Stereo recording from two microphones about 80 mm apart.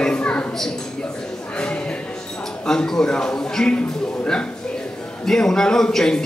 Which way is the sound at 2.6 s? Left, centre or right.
Centre.